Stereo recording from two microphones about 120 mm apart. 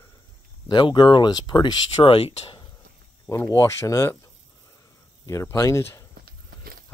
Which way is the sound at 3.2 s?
25° left (ahead or behind).